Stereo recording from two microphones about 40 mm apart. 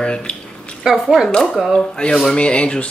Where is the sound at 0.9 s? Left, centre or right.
Centre.